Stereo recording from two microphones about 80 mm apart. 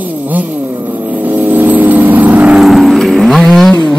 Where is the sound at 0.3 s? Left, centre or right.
Right.